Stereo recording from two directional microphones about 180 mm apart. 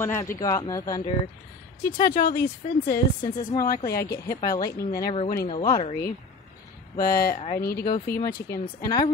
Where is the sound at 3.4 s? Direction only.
20° left (ahead or behind).